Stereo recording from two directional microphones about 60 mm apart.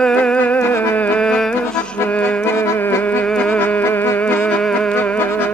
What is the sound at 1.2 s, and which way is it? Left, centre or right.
Music, centre.